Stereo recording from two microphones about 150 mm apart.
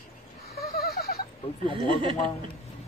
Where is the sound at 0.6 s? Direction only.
90° left.